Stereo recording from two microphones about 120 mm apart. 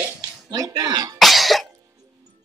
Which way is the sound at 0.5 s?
35° right (ahead or behind).